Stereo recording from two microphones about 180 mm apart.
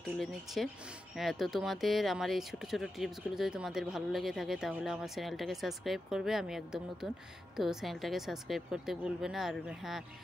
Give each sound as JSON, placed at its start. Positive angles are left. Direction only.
{"t": 0.2, "sound": "speech", "side_deg": 0}